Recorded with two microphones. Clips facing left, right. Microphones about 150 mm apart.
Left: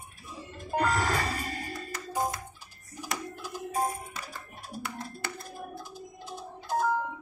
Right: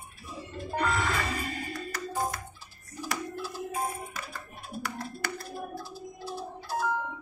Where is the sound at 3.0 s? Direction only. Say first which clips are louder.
Right 3 dB; 15° left (ahead or behind).